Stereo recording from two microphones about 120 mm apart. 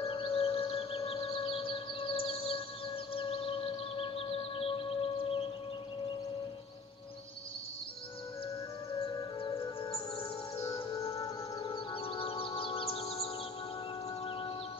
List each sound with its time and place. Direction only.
0.0 s music: 50° left (ahead or behind)
9.6 s music: 50° left (ahead or behind)
10.6 s music: 25° left (ahead or behind)
11.6 s music: 50° left (ahead or behind)